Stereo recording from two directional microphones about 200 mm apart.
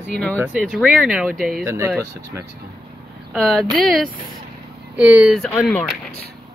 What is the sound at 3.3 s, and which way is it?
Speech, centre (ahead or behind).